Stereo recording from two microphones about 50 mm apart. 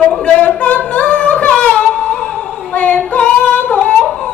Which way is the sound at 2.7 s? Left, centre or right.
Left.